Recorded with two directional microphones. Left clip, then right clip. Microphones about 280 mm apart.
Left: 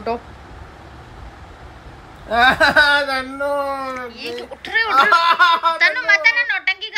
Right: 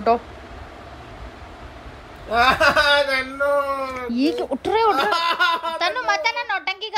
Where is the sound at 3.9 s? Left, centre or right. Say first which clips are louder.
Right 5 dB; centre.